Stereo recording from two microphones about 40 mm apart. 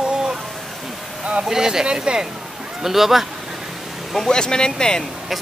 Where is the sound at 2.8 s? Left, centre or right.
Centre.